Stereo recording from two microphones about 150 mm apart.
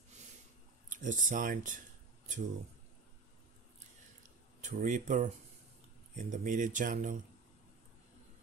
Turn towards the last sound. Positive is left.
turn(degrees=-60)  # may be behind; listen again after turning